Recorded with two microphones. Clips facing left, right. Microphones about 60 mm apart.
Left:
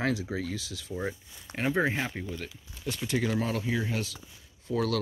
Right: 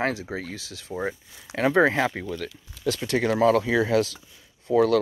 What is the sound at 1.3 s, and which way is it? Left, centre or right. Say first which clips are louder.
Speech: right 9 dB; right.